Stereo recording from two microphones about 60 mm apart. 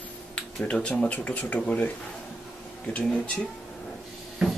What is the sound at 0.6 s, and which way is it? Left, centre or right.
Speech, left.